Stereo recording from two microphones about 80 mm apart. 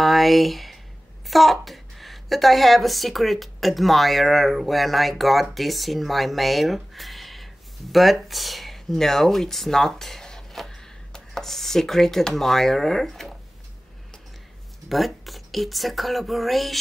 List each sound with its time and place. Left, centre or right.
0.0 s a sound: centre
1.2 s a woman's voice: centre
14.9 s a woman's voice: centre